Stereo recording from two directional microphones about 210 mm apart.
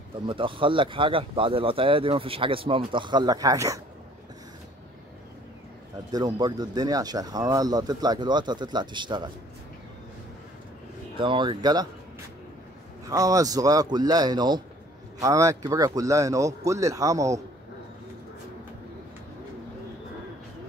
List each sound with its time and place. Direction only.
0.3 s speech: 25° right (ahead or behind)
6.1 s speech: 20° right (ahead or behind)
11.1 s speech: 25° right (ahead or behind)
13.0 s a man's voice: 15° right (ahead or behind)